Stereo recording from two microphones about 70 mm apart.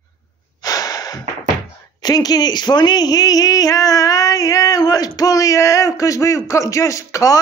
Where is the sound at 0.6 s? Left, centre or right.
Left.